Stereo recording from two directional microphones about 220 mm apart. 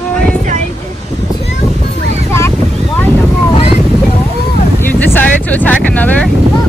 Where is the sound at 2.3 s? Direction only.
10° left (ahead or behind).